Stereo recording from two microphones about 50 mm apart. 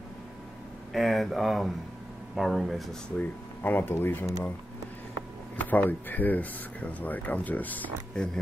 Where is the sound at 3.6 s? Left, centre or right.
Left.